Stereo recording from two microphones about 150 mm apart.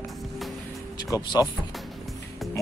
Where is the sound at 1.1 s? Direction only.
25° left (ahead or behind).